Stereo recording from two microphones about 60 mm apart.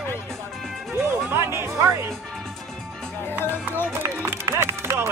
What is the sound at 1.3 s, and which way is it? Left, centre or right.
Music, right.